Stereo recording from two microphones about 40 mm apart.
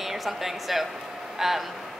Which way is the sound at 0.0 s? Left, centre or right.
Centre.